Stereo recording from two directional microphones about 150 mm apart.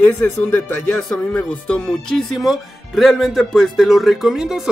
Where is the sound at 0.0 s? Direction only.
10° left (ahead or behind).